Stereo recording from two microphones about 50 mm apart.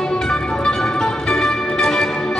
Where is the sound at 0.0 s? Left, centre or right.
Centre.